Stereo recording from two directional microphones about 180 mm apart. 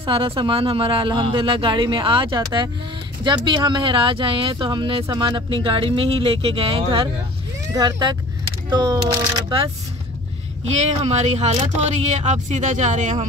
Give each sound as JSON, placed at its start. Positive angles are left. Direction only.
{"t": 0.0, "sound": "speech", "side_deg": -30}
{"t": 11.0, "sound": "speech", "side_deg": -35}